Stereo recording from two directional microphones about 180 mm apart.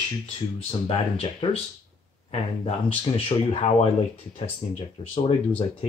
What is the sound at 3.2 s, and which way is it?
Speech, 35° left (ahead or behind).